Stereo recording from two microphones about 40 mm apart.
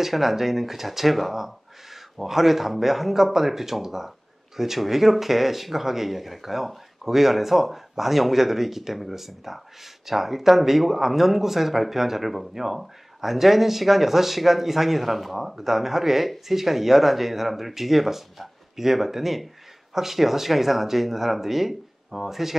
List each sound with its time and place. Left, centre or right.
0.0 s speech: centre